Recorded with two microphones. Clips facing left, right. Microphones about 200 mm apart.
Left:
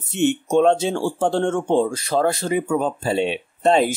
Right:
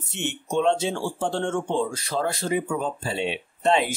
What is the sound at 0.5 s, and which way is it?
Speech, 50° left (ahead or behind).